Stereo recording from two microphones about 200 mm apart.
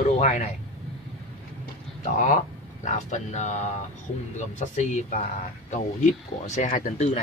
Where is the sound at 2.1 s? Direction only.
40° left (ahead or behind).